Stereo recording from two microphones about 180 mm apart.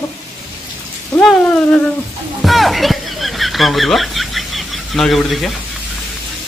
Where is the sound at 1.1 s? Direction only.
5° left (ahead or behind).